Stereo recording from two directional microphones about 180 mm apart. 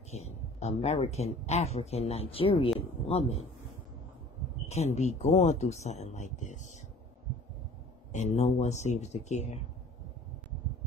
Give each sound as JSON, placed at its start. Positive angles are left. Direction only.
{"t": 0.1, "sound": "speech", "side_deg": 35}
{"t": 4.6, "sound": "speech", "side_deg": 35}
{"t": 8.1, "sound": "speech", "side_deg": 40}